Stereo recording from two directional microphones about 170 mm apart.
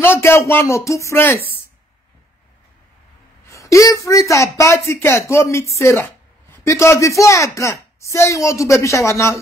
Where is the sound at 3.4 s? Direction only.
20° left (ahead or behind).